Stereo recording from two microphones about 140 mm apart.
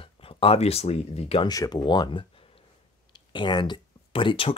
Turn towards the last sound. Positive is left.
turn(degrees=40)  # may be behind; listen again after turning